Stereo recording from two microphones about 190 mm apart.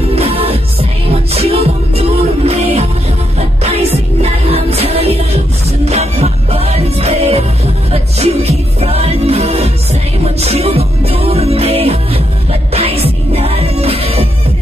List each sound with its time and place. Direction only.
0.1 s music: 30° right (ahead or behind)